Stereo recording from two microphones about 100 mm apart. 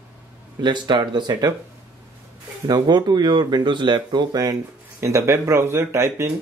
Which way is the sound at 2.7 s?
45° right (ahead or behind).